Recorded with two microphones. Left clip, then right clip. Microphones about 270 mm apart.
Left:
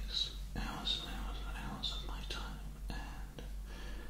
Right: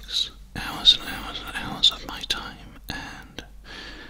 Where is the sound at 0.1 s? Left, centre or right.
Right.